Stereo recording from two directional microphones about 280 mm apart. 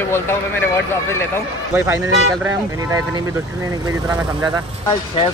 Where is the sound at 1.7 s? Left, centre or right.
Centre.